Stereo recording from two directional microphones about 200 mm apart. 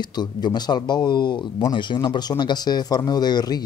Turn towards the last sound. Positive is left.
turn(degrees=20)  # may be behind; listen again after turning